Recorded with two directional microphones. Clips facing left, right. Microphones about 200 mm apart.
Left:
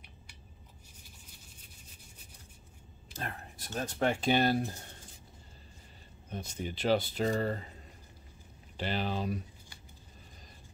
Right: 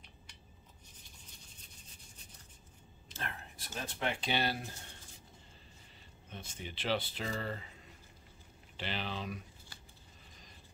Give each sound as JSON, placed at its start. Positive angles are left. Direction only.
{"t": 3.1, "sound": "speech", "side_deg": 40}
{"t": 6.3, "sound": "speech", "side_deg": 40}
{"t": 8.7, "sound": "speech", "side_deg": 45}